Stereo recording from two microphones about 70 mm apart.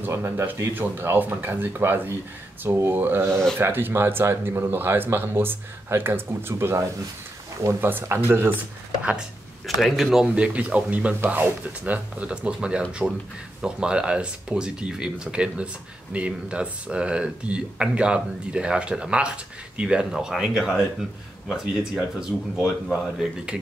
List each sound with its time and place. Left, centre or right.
0.0 s speech: right
3.3 s speech: centre
3.5 s speech: right
9.8 s speech: centre
10.3 s speech: centre